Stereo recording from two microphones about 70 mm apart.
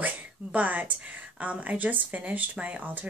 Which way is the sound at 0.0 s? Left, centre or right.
Right.